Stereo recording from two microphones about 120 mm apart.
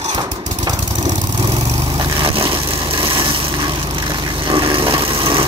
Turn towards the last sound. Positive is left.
turn(degrees=-50)  # may be behind; listen again after turning